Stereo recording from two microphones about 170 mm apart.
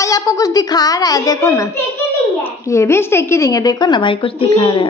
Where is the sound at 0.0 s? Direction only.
20° left (ahead or behind).